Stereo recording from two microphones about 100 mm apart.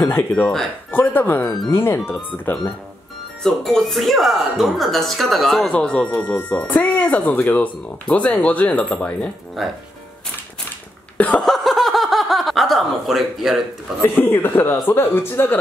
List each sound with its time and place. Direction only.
0.0 s speech: 20° left (ahead or behind)
3.4 s speech: 5° left (ahead or behind)
9.6 s speech: centre (ahead or behind)
11.1 s laughter: 15° left (ahead or behind)
11.4 s chuckle: centre (ahead or behind)
13.9 s speech: 5° right (ahead or behind)
14.2 s speech: 20° left (ahead or behind)